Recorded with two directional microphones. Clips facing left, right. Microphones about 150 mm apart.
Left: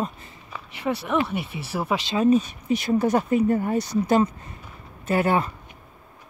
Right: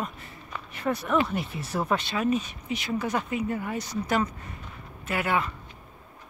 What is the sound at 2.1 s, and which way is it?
Speech, 30° left (ahead or behind).